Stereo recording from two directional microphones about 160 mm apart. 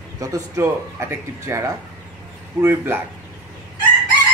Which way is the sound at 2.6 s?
15° right (ahead or behind).